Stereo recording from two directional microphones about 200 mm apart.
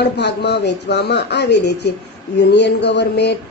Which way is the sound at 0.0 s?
55° left (ahead or behind).